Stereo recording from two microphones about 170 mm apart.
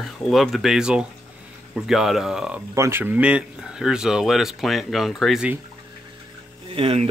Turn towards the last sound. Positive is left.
turn(degrees=-35)  # may be behind; listen again after turning